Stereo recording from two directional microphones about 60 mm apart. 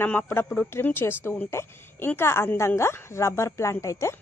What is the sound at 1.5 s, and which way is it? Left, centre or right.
Speech, left.